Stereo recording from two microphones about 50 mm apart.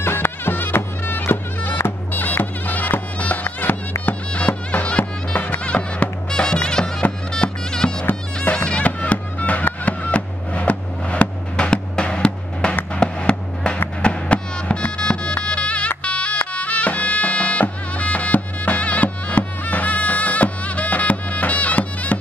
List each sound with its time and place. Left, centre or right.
0.0 s music: left; by 12.7 s centre
12.9 s a sound: left
14.0 s music: left